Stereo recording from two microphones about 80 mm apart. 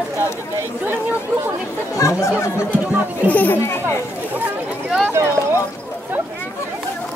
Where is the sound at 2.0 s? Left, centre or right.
Left.